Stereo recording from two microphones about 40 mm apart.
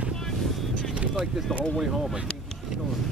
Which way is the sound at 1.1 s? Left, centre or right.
Centre.